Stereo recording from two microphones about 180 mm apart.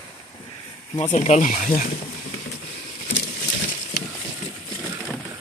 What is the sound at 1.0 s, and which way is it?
Speech, 40° left (ahead or behind).